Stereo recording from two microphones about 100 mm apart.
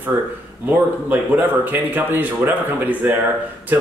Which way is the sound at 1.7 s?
20° right (ahead or behind).